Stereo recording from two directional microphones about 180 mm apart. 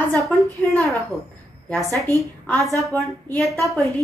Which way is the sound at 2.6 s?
20° right (ahead or behind).